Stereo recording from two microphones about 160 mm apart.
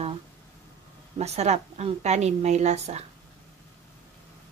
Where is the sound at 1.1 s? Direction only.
40° right (ahead or behind).